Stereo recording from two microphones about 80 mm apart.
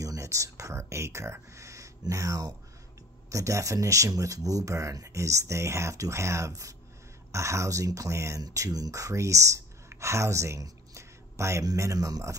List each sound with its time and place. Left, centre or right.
0.0 s speech: right